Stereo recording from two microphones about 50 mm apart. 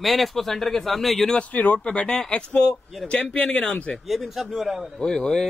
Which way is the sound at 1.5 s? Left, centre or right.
Left.